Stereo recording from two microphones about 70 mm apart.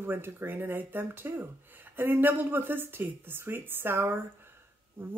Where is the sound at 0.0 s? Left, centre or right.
Right.